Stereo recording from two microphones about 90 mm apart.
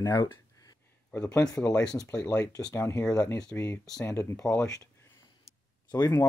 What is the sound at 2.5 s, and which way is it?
Speech, 40° left (ahead or behind).